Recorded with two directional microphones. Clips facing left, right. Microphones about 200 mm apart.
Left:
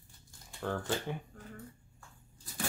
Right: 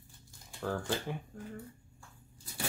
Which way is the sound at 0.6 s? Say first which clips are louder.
Even; centre (ahead or behind).